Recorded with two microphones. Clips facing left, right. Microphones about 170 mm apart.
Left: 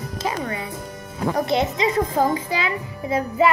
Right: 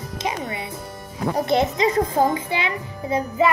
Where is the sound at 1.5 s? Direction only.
40° right (ahead or behind).